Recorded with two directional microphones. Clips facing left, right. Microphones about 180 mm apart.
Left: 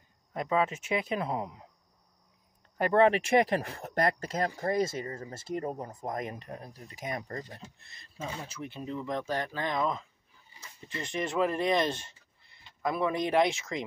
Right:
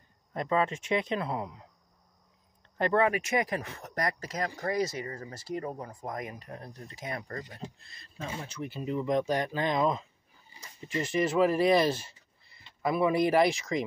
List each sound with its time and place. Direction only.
0.3 s speech: 5° left (ahead or behind)
2.8 s speech: 20° left (ahead or behind)
6.6 s speech: 15° left (ahead or behind)
8.2 s speech: 5° left (ahead or behind)
8.9 s speech: 15° right (ahead or behind)
11.0 s speech: 5° right (ahead or behind)